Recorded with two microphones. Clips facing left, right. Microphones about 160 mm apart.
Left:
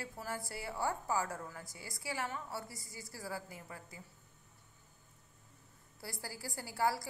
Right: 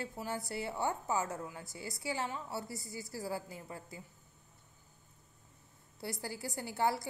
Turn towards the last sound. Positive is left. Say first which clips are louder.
# right 2 dB
turn(degrees=-25)  # may be behind; listen again after turning